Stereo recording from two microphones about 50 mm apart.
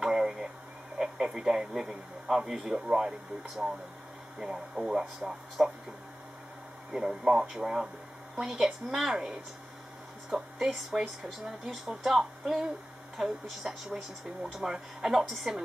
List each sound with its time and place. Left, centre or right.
0.0 s a sound: centre
0.9 s a man's voice: centre
6.9 s speech: centre